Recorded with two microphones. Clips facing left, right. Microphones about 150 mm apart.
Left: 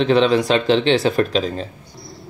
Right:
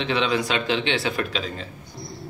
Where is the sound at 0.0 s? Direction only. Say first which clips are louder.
Left 8 dB; 40° left (ahead or behind).